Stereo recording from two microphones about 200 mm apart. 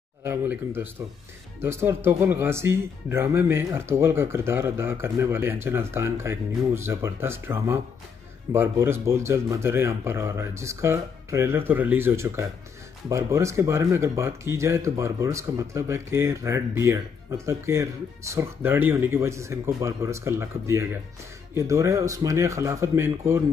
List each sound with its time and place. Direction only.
0.2 s speech: 10° right (ahead or behind)